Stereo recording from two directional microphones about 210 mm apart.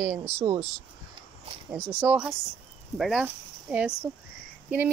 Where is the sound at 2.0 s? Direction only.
5° right (ahead or behind).